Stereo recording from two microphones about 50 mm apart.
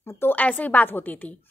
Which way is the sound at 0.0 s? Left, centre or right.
Left.